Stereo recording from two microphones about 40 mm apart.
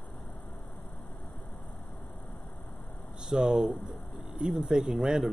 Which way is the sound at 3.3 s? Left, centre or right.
Centre.